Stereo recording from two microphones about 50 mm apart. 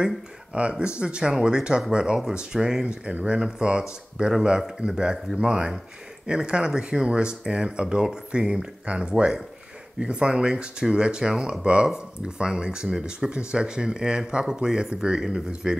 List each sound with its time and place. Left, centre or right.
0.6 s speech: right